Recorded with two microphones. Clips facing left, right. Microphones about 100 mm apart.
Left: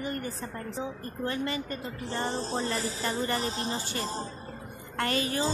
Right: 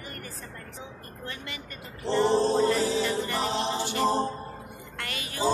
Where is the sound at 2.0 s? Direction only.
75° right (ahead or behind).